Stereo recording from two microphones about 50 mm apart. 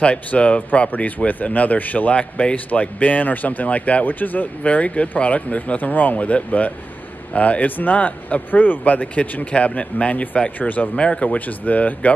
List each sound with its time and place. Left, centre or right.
0.0 s speech: left